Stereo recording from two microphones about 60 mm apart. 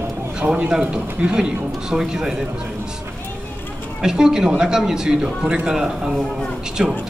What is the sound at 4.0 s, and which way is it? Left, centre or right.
A man's voice, centre.